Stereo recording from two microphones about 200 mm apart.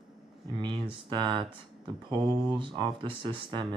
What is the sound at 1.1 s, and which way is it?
Speech, 25° right (ahead or behind).